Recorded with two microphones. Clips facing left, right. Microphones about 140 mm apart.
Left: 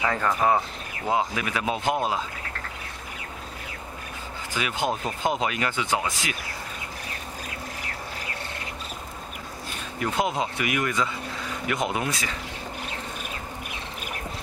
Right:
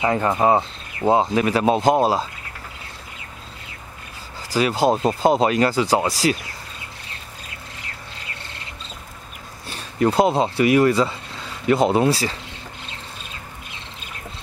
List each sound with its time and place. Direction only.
0.0 s speech: 25° right (ahead or behind)
4.5 s speech: 35° right (ahead or behind)
9.7 s speech: 35° right (ahead or behind)
12.8 s insect: 25° right (ahead or behind)